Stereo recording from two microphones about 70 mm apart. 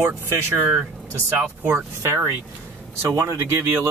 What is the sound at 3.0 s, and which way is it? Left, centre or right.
Speech, right.